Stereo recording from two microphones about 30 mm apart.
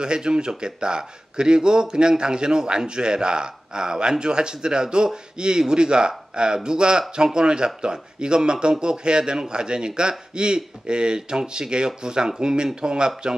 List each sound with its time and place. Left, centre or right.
0.0 s speech: right